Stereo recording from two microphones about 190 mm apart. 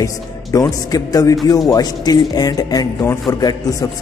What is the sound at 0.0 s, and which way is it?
A man's voice, 20° left (ahead or behind).